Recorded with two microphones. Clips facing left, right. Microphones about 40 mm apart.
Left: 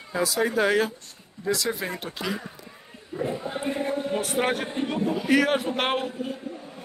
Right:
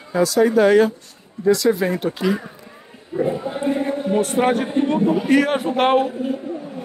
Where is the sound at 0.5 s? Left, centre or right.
Centre.